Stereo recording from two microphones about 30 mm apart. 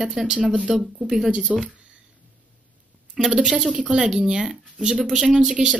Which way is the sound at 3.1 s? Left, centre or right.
Centre.